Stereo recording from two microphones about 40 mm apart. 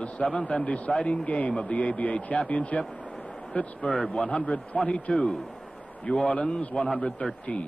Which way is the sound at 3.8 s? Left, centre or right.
Centre.